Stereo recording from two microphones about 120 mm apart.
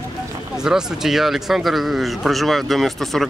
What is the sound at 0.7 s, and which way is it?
Speech, 5° right (ahead or behind).